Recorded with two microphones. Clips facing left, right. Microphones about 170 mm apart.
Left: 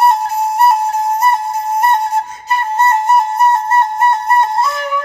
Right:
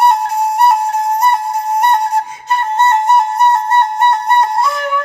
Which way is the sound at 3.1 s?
Centre (ahead or behind).